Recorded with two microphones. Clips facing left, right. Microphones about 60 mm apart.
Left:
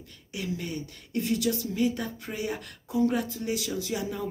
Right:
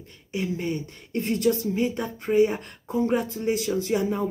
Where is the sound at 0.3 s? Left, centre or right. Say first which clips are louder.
Right 6 dB; right.